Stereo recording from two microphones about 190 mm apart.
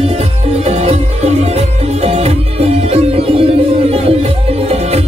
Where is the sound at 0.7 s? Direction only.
35° right (ahead or behind).